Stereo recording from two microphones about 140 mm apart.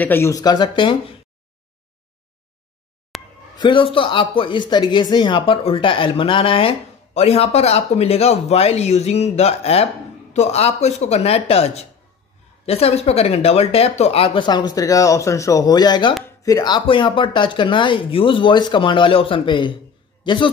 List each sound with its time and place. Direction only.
0.0 s speech: 15° left (ahead or behind); by 1.1 s 35° left (ahead or behind)
3.1 s a sound: centre (ahead or behind)
3.5 s speech: 35° left (ahead or behind)